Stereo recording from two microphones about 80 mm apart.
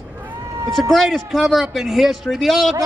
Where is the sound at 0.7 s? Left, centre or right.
Centre.